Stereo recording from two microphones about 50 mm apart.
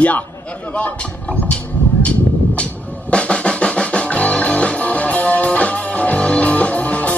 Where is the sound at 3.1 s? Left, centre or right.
Left.